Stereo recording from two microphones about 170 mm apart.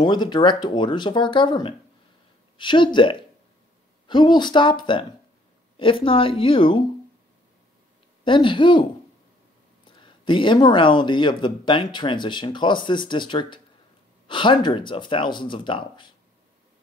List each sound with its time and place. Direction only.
0.0 s a woman's voice: 25° left (ahead or behind)
8.2 s speech: 30° left (ahead or behind)
9.9 s speech: 30° left (ahead or behind)